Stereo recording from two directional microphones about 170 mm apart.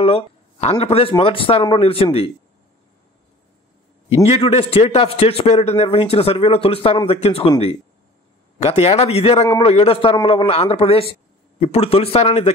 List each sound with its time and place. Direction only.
0.0 s a man's voice: 35° left (ahead or behind)
4.3 s a man's voice: 35° left (ahead or behind)